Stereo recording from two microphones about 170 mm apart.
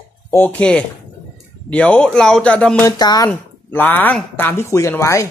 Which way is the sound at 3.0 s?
25° left (ahead or behind).